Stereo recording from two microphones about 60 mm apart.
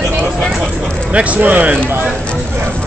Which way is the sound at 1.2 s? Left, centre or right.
Right.